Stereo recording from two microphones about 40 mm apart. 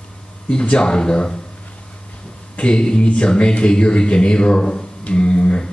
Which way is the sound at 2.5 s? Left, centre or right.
Left.